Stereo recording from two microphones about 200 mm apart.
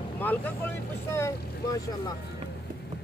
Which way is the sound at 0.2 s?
10° left (ahead or behind).